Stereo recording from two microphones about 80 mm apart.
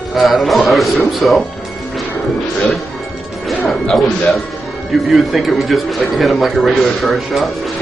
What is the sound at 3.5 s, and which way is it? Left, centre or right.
Speech, centre.